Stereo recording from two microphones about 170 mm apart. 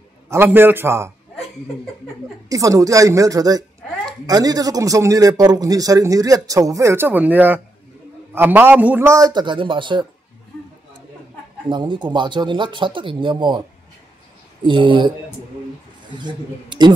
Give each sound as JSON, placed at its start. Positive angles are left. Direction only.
{"t": 0.3, "sound": "a man's voice", "side_deg": -10}
{"t": 2.5, "sound": "a man's voice", "side_deg": -20}
{"t": 11.7, "sound": "a man's voice", "side_deg": -25}
{"t": 14.6, "sound": "a man's voice", "side_deg": -30}
{"t": 16.2, "sound": "a man's voice", "side_deg": -25}